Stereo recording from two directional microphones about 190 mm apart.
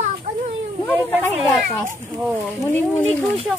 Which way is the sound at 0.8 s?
10° right (ahead or behind).